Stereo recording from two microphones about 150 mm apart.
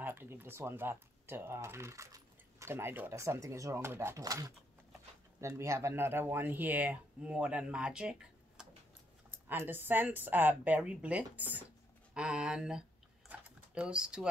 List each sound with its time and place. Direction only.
0.0 s speech: 15° right (ahead or behind)
13.3 s typing: 5° right (ahead or behind)